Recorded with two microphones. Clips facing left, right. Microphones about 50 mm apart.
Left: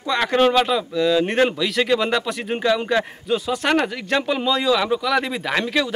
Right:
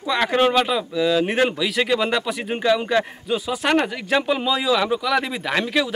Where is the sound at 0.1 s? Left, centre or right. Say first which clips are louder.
Left 1 dB; centre.